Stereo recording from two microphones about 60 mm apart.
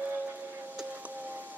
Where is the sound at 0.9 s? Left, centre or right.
Right.